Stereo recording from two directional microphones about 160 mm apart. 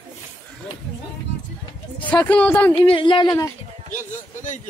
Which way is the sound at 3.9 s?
50° left (ahead or behind).